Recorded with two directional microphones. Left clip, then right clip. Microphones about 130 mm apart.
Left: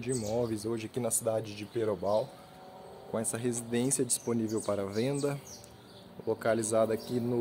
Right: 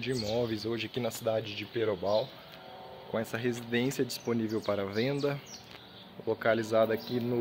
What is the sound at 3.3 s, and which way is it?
Speech, 20° left (ahead or behind).